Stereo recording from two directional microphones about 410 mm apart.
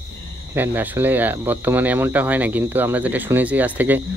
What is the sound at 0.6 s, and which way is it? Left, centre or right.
Speech, centre.